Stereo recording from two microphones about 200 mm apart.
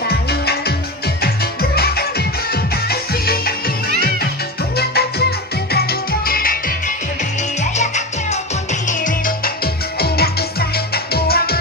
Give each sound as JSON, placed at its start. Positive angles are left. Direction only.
{"t": 0.1, "sound": "music", "side_deg": 55}
{"t": 4.7, "sound": "music", "side_deg": 55}
{"t": 7.7, "sound": "music", "side_deg": 35}
{"t": 9.9, "sound": "music", "side_deg": 50}